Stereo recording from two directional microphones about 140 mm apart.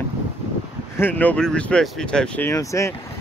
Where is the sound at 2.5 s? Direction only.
20° left (ahead or behind).